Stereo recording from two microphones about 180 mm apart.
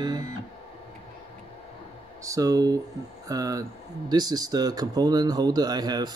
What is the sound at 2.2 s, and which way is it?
Speech, 20° right (ahead or behind).